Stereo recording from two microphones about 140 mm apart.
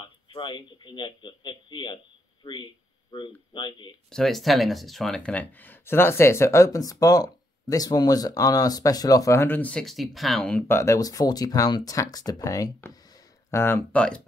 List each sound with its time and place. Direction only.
0.0 s speech: 30° left (ahead or behind)
4.1 s speech: centre (ahead or behind)
10.7 s speech: 20° left (ahead or behind)